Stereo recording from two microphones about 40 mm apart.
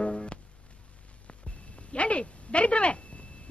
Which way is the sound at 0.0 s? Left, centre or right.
Left.